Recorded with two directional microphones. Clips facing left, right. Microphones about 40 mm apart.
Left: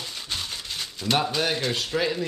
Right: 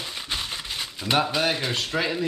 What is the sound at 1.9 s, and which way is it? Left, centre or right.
Speech, centre.